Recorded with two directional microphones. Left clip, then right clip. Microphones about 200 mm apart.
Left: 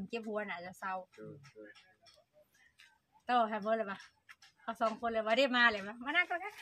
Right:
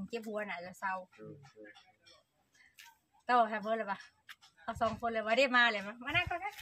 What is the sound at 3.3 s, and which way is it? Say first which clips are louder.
A woman's voice: right 2 dB; 20° left (ahead or behind).